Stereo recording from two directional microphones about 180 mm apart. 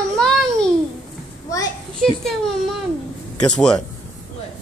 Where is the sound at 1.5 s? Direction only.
15° left (ahead or behind).